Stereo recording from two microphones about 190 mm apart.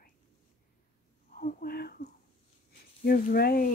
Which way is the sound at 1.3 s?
50° left (ahead or behind).